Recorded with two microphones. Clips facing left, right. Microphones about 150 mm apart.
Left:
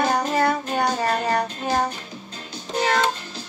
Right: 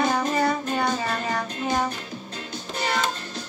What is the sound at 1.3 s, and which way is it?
Music, 35° left (ahead or behind).